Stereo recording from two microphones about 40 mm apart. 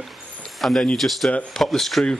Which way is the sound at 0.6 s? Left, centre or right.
Centre.